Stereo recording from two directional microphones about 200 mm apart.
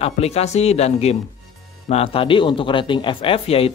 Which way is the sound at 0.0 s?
30° left (ahead or behind).